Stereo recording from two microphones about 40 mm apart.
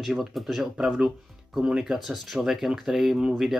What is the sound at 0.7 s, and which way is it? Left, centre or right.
Speech, centre.